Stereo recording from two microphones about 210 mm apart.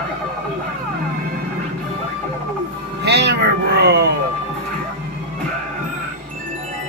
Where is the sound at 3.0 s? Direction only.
55° right (ahead or behind).